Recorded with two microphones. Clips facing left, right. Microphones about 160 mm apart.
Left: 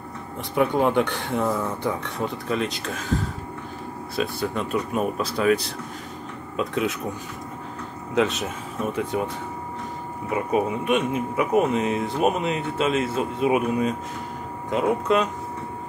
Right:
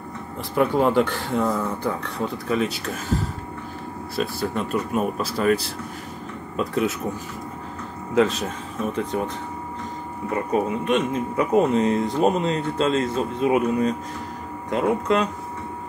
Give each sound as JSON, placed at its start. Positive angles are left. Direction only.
{"t": 0.6, "sound": "speech", "side_deg": 0}
{"t": 4.2, "sound": "speech", "side_deg": 0}
{"t": 8.1, "sound": "speech", "side_deg": 0}
{"t": 10.3, "sound": "speech", "side_deg": 10}